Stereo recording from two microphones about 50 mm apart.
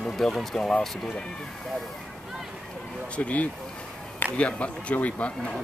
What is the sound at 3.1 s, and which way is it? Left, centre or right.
Speech, left.